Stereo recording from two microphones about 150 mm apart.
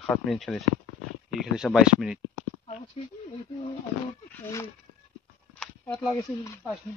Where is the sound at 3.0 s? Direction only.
40° left (ahead or behind).